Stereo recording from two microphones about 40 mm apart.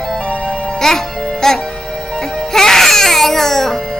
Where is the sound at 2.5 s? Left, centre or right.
Centre.